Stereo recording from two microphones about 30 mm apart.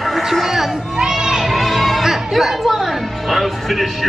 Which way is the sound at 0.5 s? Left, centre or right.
Centre.